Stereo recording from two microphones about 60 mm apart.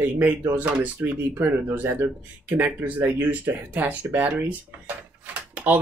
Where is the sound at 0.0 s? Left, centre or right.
Right.